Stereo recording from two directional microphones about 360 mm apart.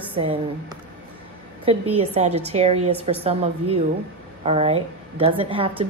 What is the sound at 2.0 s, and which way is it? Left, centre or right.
Speech, centre.